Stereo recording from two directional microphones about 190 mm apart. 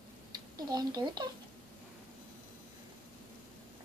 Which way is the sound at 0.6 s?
20° right (ahead or behind).